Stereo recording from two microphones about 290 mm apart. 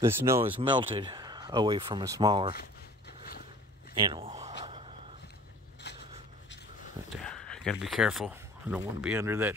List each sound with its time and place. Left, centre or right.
0.0 s speech: centre
4.0 s gasp: centre
5.9 s a sound: left
7.2 s speech: centre